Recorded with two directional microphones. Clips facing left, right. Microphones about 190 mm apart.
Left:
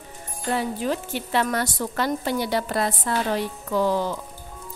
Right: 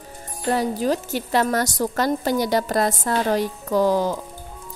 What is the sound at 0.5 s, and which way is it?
A woman's voice, 40° right (ahead or behind).